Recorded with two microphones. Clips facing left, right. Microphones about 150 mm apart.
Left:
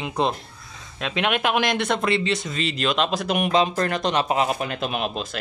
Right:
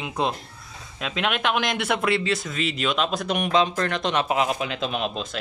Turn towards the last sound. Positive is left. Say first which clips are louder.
# left 1 dB
turn(degrees=5)  # may be behind; listen again after turning